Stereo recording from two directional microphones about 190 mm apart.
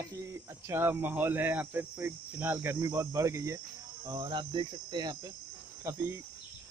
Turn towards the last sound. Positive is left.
turn(degrees=-15)  # may be behind; listen again after turning